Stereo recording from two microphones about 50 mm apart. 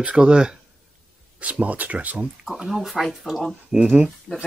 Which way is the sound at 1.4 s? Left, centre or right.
Right.